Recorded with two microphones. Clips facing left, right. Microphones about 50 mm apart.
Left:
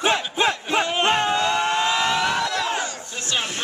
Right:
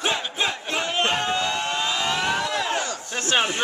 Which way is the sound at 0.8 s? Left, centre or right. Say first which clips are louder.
Left 1 dB; centre.